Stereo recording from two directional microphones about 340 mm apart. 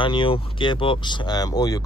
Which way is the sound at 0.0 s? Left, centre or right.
Centre.